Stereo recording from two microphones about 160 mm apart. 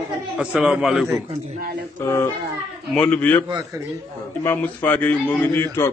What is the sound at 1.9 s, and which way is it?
A man's voice, 15° left (ahead or behind).